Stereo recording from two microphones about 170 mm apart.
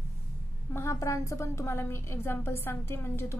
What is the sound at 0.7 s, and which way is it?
A woman's voice, 15° left (ahead or behind).